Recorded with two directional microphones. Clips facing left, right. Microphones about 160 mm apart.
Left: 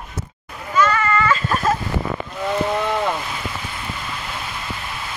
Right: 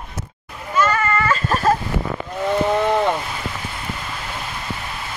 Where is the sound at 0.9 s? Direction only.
40° right (ahead or behind).